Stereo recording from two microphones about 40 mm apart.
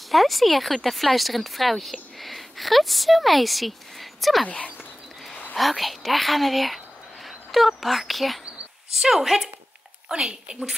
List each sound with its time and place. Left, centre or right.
0.1 s speech: centre
5.6 s a woman's voice: centre
10.0 s speech: centre